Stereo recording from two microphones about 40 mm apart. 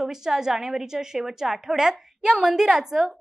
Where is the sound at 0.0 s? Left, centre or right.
Centre.